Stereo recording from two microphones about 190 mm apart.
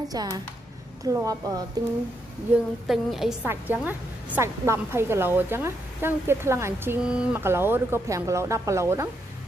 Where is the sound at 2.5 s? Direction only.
Centre (ahead or behind).